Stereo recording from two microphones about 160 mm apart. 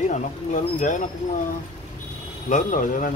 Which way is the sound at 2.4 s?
55° left (ahead or behind).